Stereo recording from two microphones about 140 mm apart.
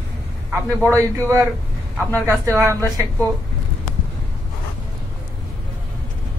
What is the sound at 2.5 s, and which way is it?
Speech, 20° right (ahead or behind).